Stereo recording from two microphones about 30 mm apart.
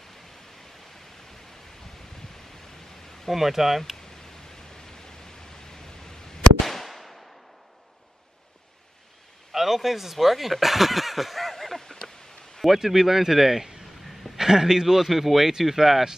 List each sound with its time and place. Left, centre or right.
3.3 s speech: centre
4.7 s pink noise: centre
6.6 s fireworks: centre
9.5 s speech: centre
12.6 s speech: centre